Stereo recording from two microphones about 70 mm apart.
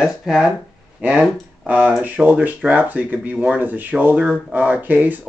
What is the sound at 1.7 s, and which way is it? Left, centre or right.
Speech, centre.